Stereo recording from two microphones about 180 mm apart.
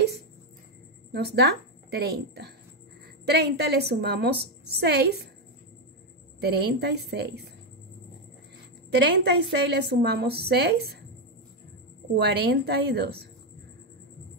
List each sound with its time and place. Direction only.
1.1 s a woman's voice: 65° right (ahead or behind)
6.4 s a woman's voice: 65° right (ahead or behind)
9.1 s a woman's voice: 65° right (ahead or behind)
12.2 s a woman's voice: 65° right (ahead or behind)